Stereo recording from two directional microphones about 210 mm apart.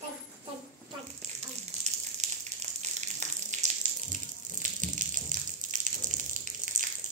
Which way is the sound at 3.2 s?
35° right (ahead or behind).